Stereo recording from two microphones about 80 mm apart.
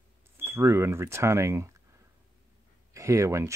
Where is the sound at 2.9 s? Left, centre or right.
Right.